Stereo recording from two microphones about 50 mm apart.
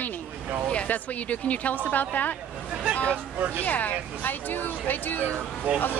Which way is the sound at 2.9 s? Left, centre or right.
Left.